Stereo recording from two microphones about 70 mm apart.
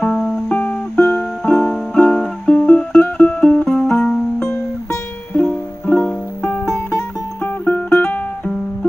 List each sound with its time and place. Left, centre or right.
0.5 s music: centre
5.3 s music: left